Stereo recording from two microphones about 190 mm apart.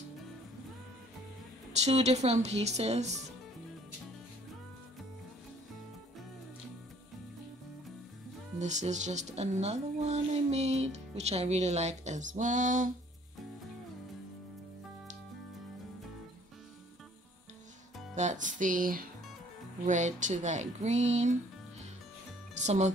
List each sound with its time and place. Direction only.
1.7 s speech: 35° right (ahead or behind)
8.5 s speech: 40° right (ahead or behind)
18.1 s speech: 40° right (ahead or behind)
22.5 s speech: 40° right (ahead or behind)